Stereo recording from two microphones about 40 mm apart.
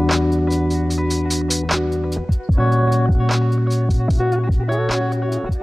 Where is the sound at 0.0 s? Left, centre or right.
Centre.